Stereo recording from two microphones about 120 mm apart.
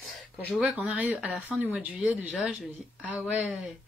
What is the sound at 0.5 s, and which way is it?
Speech, 10° right (ahead or behind).